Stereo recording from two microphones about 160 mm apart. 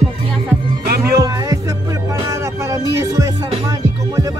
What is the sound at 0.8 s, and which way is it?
Music, 80° right.